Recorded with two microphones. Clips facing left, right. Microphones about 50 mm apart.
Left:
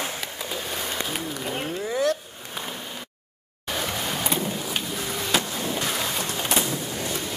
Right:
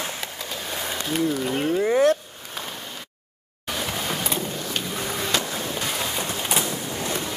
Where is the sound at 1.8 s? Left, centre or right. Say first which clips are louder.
Right 5 dB; right.